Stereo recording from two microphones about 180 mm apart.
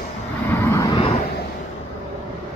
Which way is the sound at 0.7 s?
15° left (ahead or behind).